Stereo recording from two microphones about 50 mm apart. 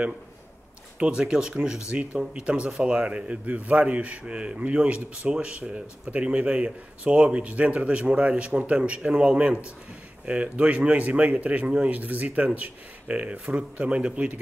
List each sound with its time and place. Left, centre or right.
0.9 s speech: right